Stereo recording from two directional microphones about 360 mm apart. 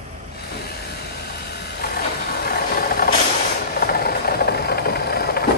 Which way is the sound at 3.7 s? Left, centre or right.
Left.